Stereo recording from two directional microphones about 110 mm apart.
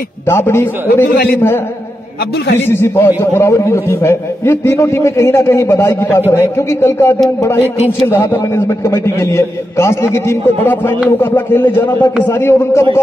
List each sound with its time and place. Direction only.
0.3 s a man's voice: 20° left (ahead or behind)
2.6 s a man's voice: 20° left (ahead or behind)